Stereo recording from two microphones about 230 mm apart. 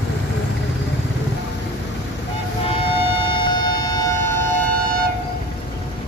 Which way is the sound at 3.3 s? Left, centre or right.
Centre.